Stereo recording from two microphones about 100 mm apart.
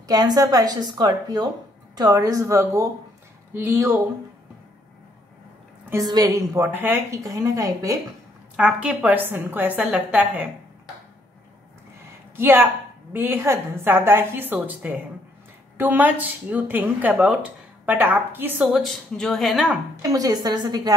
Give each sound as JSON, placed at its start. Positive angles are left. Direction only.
{"t": 0.0, "sound": "a woman's voice", "side_deg": -40}
{"t": 6.0, "sound": "a woman's voice", "side_deg": -40}
{"t": 6.7, "sound": "a woman's voice", "side_deg": -20}
{"t": 8.5, "sound": "a woman's voice", "side_deg": -10}
{"t": 12.4, "sound": "a woman's voice", "side_deg": -20}
{"t": 18.7, "sound": "speech", "side_deg": 0}
{"t": 20.0, "sound": "a woman's voice", "side_deg": -35}